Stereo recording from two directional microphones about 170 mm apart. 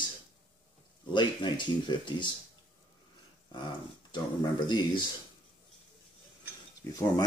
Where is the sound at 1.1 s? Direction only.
25° left (ahead or behind).